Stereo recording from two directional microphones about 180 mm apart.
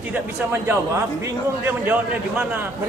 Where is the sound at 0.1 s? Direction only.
10° right (ahead or behind).